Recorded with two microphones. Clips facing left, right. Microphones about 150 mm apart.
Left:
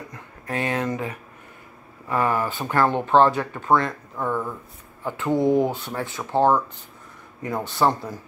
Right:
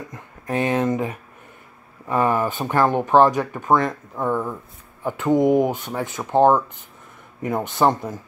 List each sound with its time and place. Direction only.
0.1 s a man's voice: 20° right (ahead or behind)